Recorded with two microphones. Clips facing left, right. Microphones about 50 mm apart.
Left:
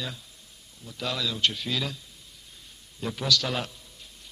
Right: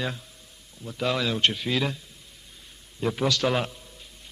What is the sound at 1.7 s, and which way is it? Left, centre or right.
Speech, right.